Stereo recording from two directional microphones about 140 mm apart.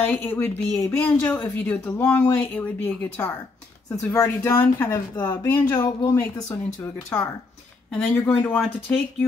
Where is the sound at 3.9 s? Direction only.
25° left (ahead or behind).